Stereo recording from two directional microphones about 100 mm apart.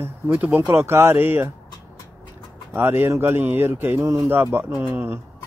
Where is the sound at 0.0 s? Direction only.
15° right (ahead or behind).